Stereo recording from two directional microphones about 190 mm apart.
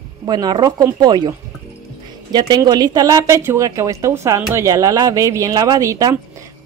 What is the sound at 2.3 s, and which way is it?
A woman's voice, 20° right (ahead or behind).